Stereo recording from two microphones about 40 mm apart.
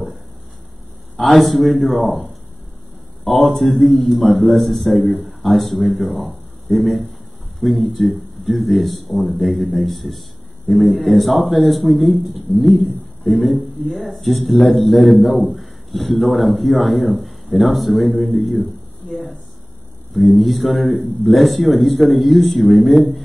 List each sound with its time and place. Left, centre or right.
1.2 s a man's voice: centre
19.0 s a sound: centre
20.1 s a man's voice: centre